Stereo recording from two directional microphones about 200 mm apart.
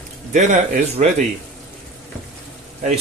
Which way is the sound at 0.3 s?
35° right (ahead or behind).